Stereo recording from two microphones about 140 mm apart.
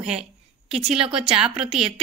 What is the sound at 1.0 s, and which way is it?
Speech, 40° right (ahead or behind).